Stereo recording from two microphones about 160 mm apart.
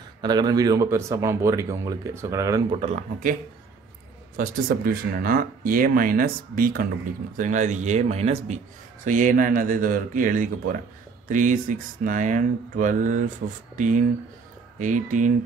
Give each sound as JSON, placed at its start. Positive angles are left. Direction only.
{"t": 0.2, "sound": "speech", "side_deg": -25}
{"t": 2.8, "sound": "speech", "side_deg": -45}
{"t": 4.4, "sound": "speech", "side_deg": -60}
{"t": 7.3, "sound": "speech", "side_deg": -50}
{"t": 9.0, "sound": "speech", "side_deg": -55}
{"t": 13.4, "sound": "speech", "side_deg": -65}
{"t": 13.7, "sound": "speech", "side_deg": -50}